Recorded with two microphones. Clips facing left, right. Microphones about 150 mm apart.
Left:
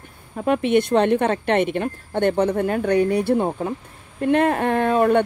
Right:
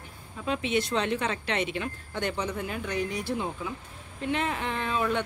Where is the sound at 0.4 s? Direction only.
55° left (ahead or behind).